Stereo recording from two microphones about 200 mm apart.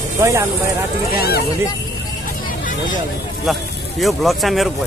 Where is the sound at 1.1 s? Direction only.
50° left (ahead or behind).